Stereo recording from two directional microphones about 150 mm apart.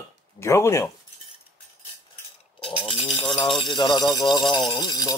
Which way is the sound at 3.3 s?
35° left (ahead or behind).